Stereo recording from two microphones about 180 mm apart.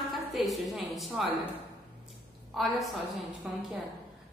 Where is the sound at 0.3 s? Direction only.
Centre (ahead or behind).